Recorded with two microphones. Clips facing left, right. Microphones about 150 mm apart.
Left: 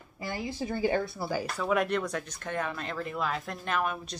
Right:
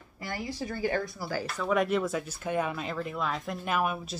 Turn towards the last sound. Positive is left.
turn(degrees=-10)  # may be behind; listen again after turning